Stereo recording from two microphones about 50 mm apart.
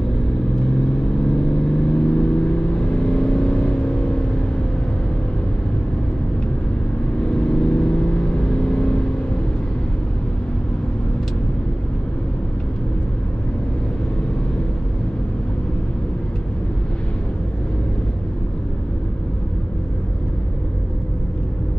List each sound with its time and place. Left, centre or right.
1.2 s vehicle: centre
7.2 s vehicle: centre